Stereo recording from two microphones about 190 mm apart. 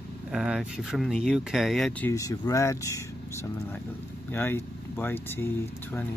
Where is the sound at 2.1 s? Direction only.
15° left (ahead or behind).